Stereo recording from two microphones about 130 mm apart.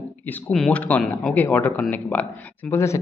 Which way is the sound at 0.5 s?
5° left (ahead or behind).